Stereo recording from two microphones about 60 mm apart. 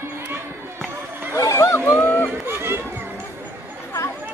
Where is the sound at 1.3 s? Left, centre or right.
Left.